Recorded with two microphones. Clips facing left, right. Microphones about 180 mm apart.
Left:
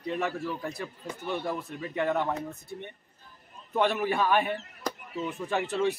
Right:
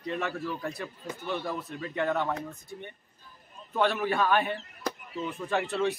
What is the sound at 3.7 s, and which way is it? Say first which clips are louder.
Speech: left 1 dB; 15° left (ahead or behind).